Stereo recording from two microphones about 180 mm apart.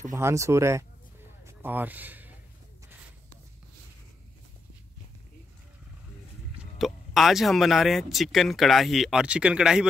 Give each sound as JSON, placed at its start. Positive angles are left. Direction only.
{"t": 0.1, "sound": "speech", "side_deg": -15}
{"t": 1.4, "sound": "a sound", "side_deg": -10}
{"t": 6.6, "sound": "speech", "side_deg": 0}